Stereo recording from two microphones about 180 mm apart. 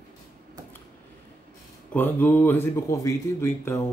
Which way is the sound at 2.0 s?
10° left (ahead or behind).